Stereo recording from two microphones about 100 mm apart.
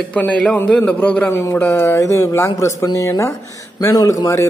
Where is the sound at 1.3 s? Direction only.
25° left (ahead or behind).